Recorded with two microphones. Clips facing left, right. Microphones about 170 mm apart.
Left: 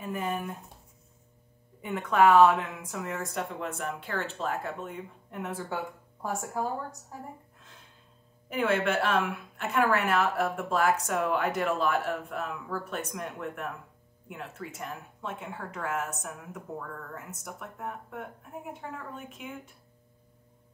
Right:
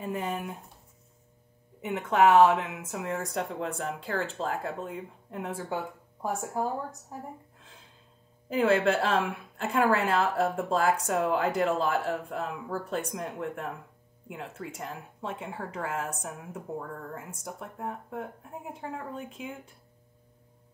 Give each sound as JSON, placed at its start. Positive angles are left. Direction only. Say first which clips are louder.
{"t": 0.0, "sound": "speech", "louder": "even", "side_deg": -25}
{"t": 1.8, "sound": "speech", "louder": "even", "side_deg": -25}
{"t": 8.5, "sound": "a woman's voice", "louder": "right 3 dB", "side_deg": -30}